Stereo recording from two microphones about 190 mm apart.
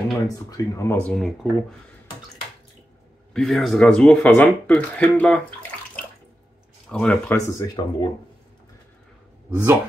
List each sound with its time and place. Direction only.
0.3 s speech: 15° left (ahead or behind)
3.3 s speech: centre (ahead or behind)
7.5 s speech: 20° left (ahead or behind)
9.5 s speech: 15° right (ahead or behind)